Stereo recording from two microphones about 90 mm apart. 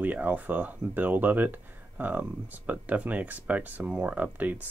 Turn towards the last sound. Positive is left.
turn(degrees=-20)  # may be behind; listen again after turning